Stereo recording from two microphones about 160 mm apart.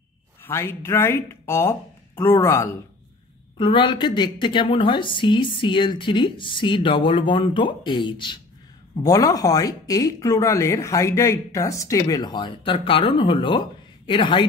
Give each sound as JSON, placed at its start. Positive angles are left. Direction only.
{"t": 0.4, "sound": "speech", "side_deg": 15}
{"t": 3.5, "sound": "speech", "side_deg": 30}